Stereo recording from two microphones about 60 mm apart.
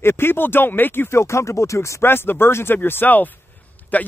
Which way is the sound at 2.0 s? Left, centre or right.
Left.